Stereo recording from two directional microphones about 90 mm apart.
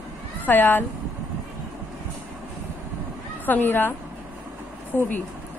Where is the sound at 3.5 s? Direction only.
20° left (ahead or behind).